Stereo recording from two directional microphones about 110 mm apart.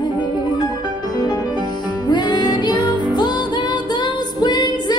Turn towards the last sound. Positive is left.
turn(degrees=40)  # may be behind; listen again after turning